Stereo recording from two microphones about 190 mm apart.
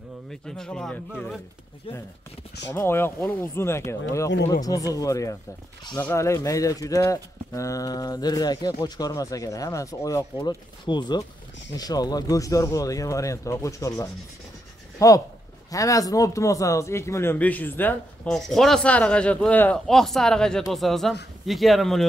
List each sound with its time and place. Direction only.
0.3 s speech: 5° left (ahead or behind)
1.9 s speech: 30° left (ahead or behind)
2.7 s speech: 10° left (ahead or behind)